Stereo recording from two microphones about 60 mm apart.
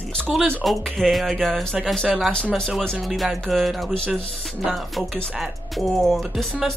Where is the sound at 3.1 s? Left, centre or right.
Centre.